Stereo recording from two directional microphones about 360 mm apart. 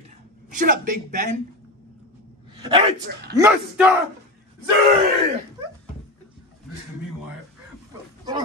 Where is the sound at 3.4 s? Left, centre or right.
Centre.